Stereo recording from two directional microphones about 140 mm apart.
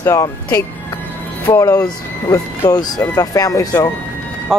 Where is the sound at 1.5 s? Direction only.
25° left (ahead or behind).